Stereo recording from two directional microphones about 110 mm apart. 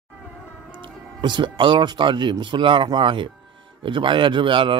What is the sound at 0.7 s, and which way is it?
Speech, 45° right (ahead or behind).